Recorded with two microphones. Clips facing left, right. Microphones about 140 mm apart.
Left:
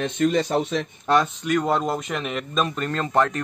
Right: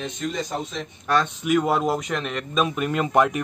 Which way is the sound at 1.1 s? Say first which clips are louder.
Left 2 dB; 25° left (ahead or behind).